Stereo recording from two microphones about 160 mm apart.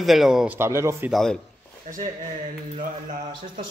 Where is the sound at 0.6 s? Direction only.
15° right (ahead or behind).